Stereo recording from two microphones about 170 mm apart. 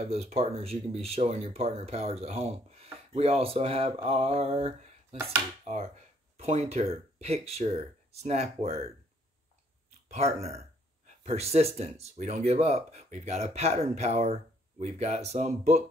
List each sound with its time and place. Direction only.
0.1 s speech: 35° right (ahead or behind)
5.1 s dishes: 15° right (ahead or behind)
6.3 s speech: 40° right (ahead or behind)
10.0 s speech: 40° right (ahead or behind)